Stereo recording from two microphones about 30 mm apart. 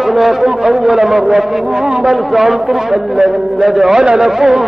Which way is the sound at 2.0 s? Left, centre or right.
Centre.